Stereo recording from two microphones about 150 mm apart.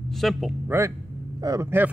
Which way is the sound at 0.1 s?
Centre (ahead or behind).